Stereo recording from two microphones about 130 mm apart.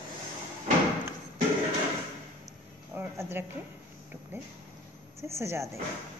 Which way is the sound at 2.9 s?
15° right (ahead or behind).